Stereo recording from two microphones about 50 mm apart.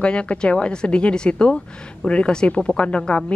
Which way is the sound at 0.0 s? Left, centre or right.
Left.